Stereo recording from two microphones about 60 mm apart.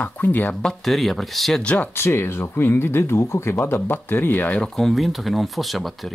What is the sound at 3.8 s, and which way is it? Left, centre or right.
Speech, left.